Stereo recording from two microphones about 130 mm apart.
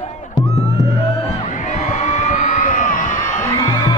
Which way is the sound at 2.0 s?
70° left (ahead or behind).